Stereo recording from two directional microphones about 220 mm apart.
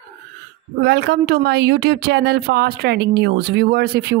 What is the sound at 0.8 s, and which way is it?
Speech, 50° right (ahead or behind).